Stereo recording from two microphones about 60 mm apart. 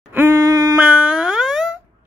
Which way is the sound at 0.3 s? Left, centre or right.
Right.